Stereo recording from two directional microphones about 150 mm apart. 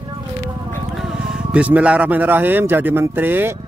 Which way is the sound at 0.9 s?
5° right (ahead or behind).